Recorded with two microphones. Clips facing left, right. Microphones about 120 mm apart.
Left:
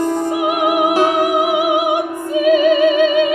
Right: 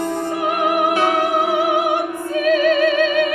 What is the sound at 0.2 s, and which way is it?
Music, 15° left (ahead or behind).